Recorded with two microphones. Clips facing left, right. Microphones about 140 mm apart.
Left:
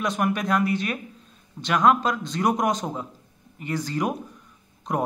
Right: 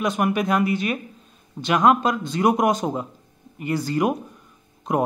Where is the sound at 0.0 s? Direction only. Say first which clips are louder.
Right 3 dB; 5° right (ahead or behind).